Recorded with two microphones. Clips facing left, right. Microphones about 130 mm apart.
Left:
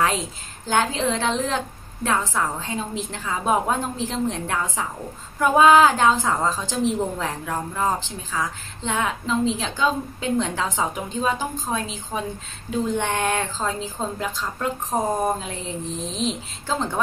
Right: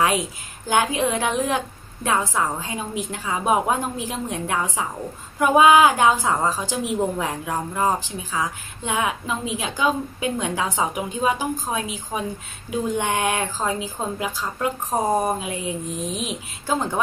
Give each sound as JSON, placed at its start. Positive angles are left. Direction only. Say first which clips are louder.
{"t": 0.0, "sound": "a woman's voice", "louder": "right 2 dB", "side_deg": -15}